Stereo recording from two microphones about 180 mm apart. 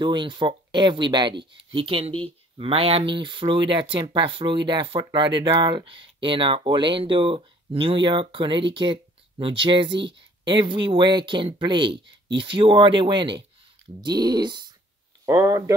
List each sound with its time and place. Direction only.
0.0 s speech: 25° right (ahead or behind)